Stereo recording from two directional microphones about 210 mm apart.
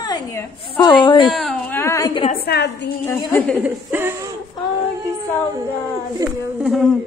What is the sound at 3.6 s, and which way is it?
Speech, 10° right (ahead or behind).